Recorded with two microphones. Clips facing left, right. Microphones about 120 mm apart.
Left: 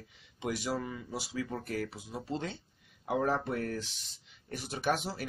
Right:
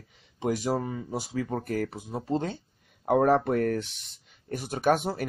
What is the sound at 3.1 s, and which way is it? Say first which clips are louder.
Speech: right 9 dB; 55° right (ahead or behind).